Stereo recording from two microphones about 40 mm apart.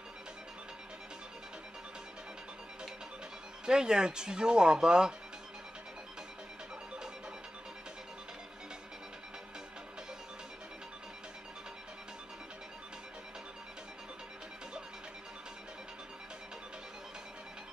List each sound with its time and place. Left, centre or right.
3.6 s speech: centre